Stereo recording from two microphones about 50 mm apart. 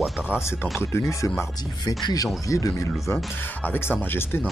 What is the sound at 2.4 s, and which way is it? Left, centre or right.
Speech, left.